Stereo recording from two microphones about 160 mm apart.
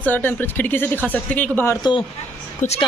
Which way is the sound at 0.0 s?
10° left (ahead or behind).